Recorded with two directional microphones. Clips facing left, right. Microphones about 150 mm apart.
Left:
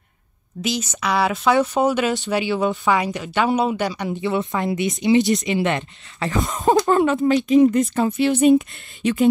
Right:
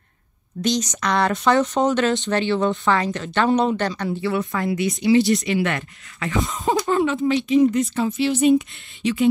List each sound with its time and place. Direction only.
0.6 s a woman's voice: 5° left (ahead or behind); by 6.3 s 25° left (ahead or behind)
6.3 s speech: 45° left (ahead or behind)